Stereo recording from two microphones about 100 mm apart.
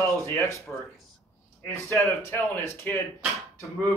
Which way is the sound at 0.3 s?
30° left (ahead or behind).